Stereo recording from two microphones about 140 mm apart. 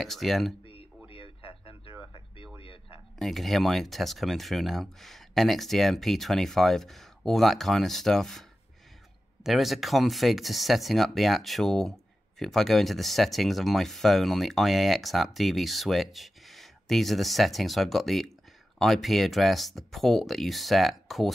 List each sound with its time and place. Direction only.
0.0 s speech: centre (ahead or behind)
1.1 s a sound: 40° left (ahead or behind)
3.2 s speech: centre (ahead or behind)